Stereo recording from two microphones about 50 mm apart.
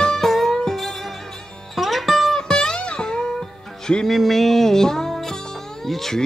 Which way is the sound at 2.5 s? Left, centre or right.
Centre.